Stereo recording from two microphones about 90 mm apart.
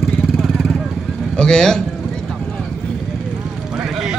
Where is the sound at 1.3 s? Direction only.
10° left (ahead or behind).